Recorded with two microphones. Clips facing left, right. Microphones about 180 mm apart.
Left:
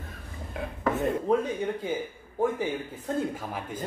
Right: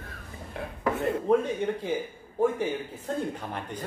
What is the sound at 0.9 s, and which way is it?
Speech, centre (ahead or behind).